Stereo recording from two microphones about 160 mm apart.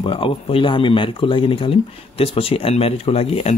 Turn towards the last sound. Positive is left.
turn(degrees=40)  # may be behind; listen again after turning